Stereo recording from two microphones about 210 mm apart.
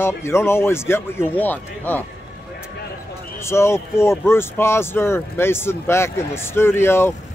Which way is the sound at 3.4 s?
10° left (ahead or behind).